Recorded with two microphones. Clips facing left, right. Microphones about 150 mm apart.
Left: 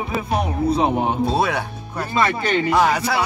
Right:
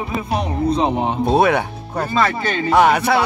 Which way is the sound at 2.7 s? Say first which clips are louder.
Right 7 dB; 60° right (ahead or behind).